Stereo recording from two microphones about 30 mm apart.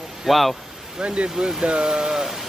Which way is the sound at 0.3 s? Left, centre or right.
Centre.